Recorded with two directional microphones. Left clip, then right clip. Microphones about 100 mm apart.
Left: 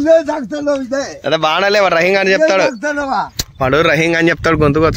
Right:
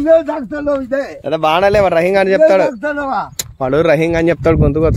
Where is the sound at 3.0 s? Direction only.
15° right (ahead or behind).